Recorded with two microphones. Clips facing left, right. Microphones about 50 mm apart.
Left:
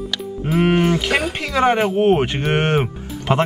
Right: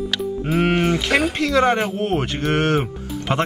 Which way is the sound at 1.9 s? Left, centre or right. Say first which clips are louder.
Left 6 dB; left.